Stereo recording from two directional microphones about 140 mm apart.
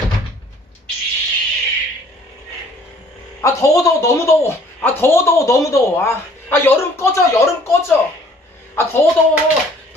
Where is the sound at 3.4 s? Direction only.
25° left (ahead or behind).